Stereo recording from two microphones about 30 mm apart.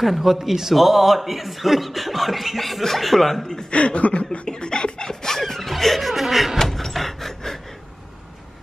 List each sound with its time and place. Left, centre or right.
0.0 s a man's voice: centre
0.7 s speech: centre
3.7 s chuckle: left
4.5 s a sound: left
5.4 s speech: centre
6.6 s a sound: centre